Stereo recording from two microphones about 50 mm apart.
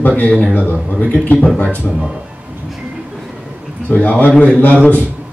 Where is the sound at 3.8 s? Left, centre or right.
Left.